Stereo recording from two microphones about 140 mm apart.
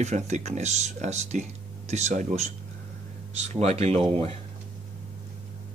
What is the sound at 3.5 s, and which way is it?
Speech, 50° right (ahead or behind).